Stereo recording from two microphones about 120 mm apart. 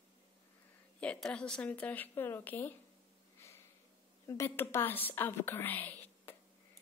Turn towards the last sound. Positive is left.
turn(degrees=15)  # may be behind; listen again after turning